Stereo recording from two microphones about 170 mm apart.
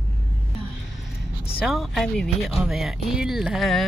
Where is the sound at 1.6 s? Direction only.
Centre (ahead or behind).